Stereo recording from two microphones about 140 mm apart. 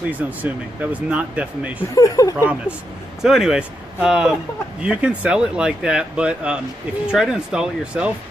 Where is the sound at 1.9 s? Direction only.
25° left (ahead or behind).